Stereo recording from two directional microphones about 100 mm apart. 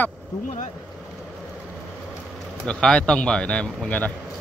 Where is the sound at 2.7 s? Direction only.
10° left (ahead or behind).